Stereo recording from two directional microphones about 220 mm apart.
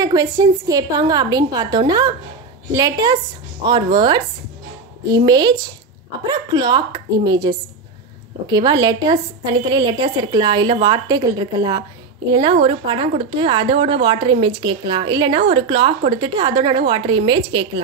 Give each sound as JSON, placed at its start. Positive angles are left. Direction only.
{"t": 0.0, "sound": "a woman's voice", "side_deg": -15}